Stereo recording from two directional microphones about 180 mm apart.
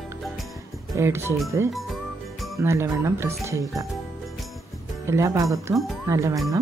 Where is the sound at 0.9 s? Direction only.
15° right (ahead or behind).